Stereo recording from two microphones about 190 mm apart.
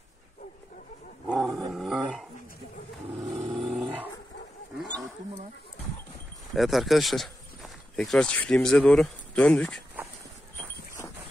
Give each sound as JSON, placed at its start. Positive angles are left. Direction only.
{"t": 1.2, "sound": "dog", "side_deg": 0}
{"t": 3.5, "sound": "dog", "side_deg": 0}
{"t": 4.7, "sound": "roaring cats", "side_deg": 5}
{"t": 6.5, "sound": "speech", "side_deg": 0}